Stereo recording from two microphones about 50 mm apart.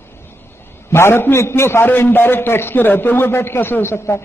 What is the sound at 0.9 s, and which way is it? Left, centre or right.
A man's voice, left.